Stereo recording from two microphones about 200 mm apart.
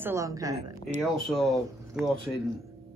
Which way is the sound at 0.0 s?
15° right (ahead or behind).